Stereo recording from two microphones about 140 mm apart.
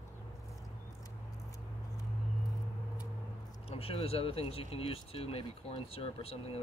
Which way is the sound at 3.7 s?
45° left (ahead or behind).